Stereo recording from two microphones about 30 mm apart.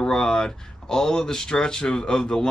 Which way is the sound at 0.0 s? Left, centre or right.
Left.